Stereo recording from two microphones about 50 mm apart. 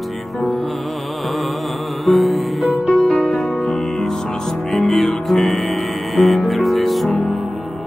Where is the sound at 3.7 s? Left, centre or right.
Centre.